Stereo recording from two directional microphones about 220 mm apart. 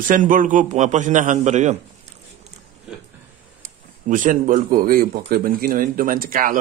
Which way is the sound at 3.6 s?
35° right (ahead or behind).